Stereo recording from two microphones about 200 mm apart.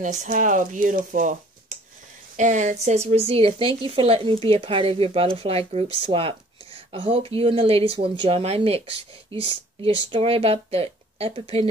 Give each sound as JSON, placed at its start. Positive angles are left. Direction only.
{"t": 0.0, "sound": "speech", "side_deg": -40}